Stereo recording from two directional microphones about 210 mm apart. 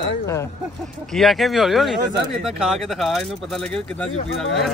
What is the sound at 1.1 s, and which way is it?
Speech, centre (ahead or behind).